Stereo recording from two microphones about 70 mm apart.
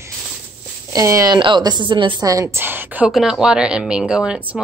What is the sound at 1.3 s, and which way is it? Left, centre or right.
A woman's voice, right.